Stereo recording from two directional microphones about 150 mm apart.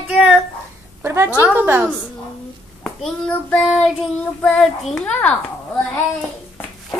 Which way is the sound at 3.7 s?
Centre (ahead or behind).